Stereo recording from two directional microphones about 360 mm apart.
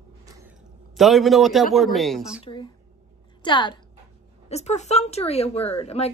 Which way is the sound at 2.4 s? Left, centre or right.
Centre.